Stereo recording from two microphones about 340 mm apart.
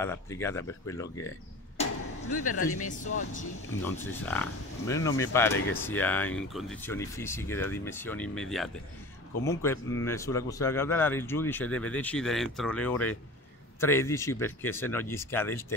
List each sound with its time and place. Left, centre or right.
0.0 s speech: centre
2.3 s speech: left
3.8 s speech: centre